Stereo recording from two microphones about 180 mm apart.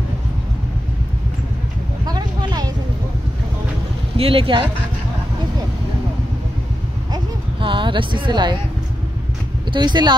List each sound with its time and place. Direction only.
2.0 s vehicle: 20° right (ahead or behind)
4.2 s speech: 30° right (ahead or behind)
7.6 s speech: 25° right (ahead or behind)
9.7 s speech: 25° right (ahead or behind)